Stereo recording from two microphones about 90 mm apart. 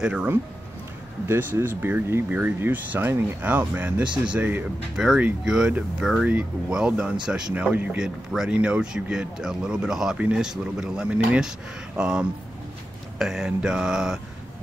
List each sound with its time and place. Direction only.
0.0 s speech: 10° right (ahead or behind)
1.2 s speech: 25° right (ahead or behind); by 7.6 s 10° right (ahead or behind)
7.7 s speech: 20° right (ahead or behind)
8.0 s speech: 5° right (ahead or behind)